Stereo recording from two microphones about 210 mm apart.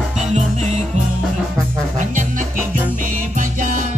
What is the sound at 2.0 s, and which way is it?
Music, 40° right (ahead or behind).